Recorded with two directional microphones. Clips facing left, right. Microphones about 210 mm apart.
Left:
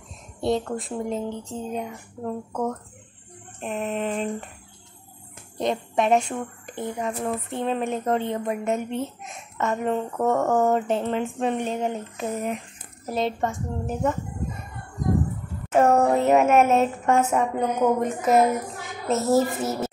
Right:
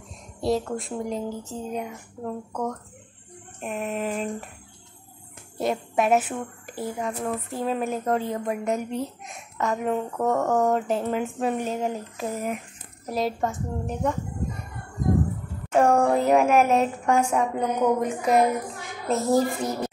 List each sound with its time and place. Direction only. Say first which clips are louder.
0.4 s a woman's voice: even; centre (ahead or behind)
3.6 s a woman's voice: left 1 dB; 5° right (ahead or behind)
5.6 s a woman's voice: even; 5° right (ahead or behind)
15.7 s a woman's voice: left 1 dB; 5° left (ahead or behind)